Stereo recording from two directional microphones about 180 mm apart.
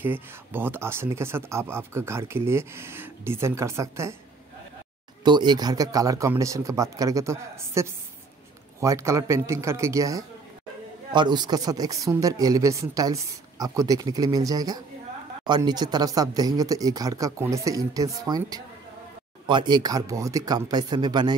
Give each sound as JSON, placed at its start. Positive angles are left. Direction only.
{"t": 0.0, "sound": "speech", "side_deg": -10}
{"t": 5.2, "sound": "speech", "side_deg": -25}